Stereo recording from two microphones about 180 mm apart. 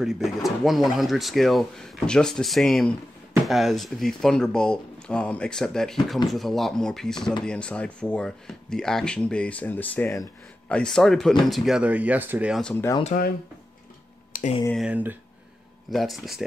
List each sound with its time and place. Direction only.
0.0 s speech: centre (ahead or behind)
13.0 s speech: 50° left (ahead or behind)
14.3 s a sound: 55° left (ahead or behind)
14.7 s speech: 5° right (ahead or behind)